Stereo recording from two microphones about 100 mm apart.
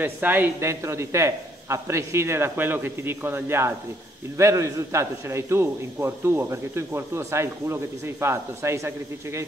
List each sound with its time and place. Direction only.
0.0 s a man's voice: 20° right (ahead or behind)